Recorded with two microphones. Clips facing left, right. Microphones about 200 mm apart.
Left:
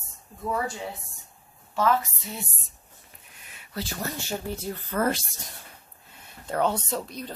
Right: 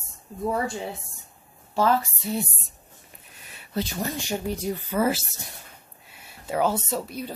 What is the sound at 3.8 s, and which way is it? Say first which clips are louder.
Speech: right 4 dB; 15° right (ahead or behind).